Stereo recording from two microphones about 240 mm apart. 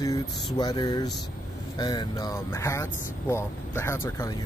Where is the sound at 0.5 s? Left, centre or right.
Centre.